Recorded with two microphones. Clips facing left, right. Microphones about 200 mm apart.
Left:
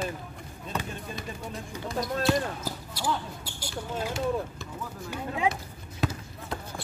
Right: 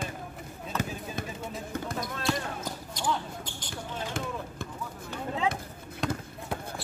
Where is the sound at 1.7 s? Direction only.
55° right (ahead or behind).